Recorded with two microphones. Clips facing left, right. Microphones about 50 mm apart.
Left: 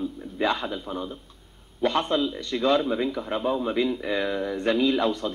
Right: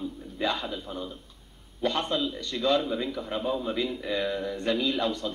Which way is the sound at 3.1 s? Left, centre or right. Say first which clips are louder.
Left 4 dB; left.